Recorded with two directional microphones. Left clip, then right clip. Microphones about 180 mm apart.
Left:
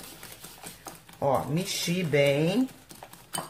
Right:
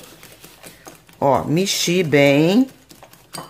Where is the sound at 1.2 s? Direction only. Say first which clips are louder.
Right 10 dB; 60° right (ahead or behind).